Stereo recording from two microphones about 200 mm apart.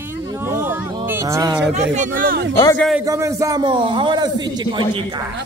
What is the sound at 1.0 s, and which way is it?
Music, 15° right (ahead or behind).